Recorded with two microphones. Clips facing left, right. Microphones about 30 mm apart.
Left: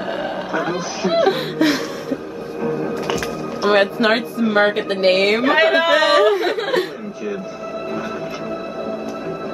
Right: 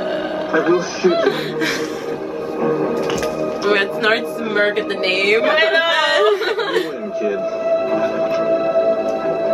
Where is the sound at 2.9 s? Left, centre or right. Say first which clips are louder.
Right 3 dB; centre.